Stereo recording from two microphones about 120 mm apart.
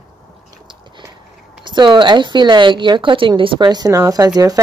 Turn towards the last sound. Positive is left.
turn(degrees=-30)  # may be behind; listen again after turning